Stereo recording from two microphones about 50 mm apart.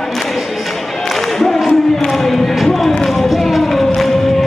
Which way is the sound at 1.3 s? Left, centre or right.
Centre.